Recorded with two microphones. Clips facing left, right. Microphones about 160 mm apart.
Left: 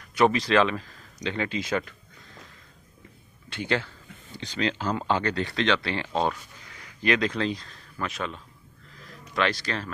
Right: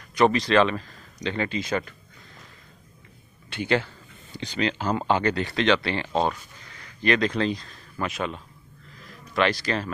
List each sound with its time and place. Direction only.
0.1 s speech: 5° left (ahead or behind)
3.6 s speech: 10° right (ahead or behind)
4.3 s a sound: 70° right (ahead or behind)
4.6 s speech: 10° right (ahead or behind)